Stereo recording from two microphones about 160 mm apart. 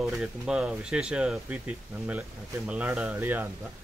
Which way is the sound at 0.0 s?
5° right (ahead or behind).